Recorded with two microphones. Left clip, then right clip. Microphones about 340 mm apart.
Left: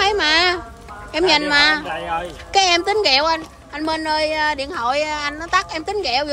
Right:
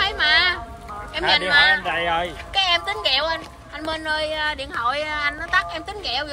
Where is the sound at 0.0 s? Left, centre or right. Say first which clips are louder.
Left 2 dB; centre.